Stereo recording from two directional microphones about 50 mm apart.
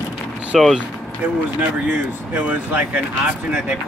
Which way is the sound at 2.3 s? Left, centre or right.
Right.